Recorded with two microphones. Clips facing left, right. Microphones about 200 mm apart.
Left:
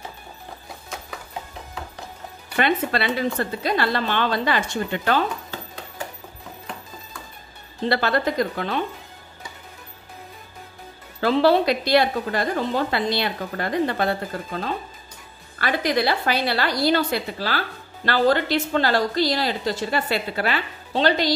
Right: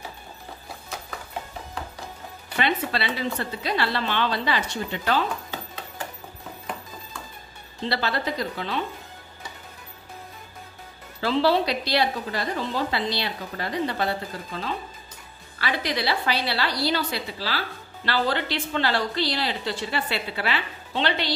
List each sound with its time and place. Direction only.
2.5 s a woman's voice: 50° left (ahead or behind)
7.8 s a woman's voice: 50° left (ahead or behind)
11.1 s a woman's voice: 50° left (ahead or behind)